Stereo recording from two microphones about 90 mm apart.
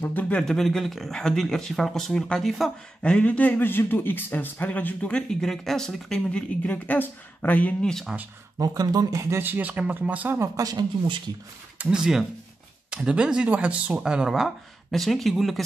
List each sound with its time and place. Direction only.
0.0 s speech: 20° left (ahead or behind)
0.4 s a man's voice: 5° left (ahead or behind)
7.8 s speech: 5° left (ahead or behind)
8.5 s speech: 45° right (ahead or behind)
9.4 s speech: 20° right (ahead or behind)
10.4 s speech: 40° right (ahead or behind)
11.8 s speech: 10° right (ahead or behind)